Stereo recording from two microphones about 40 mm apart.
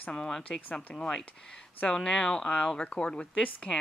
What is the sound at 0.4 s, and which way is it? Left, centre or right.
Speech, left.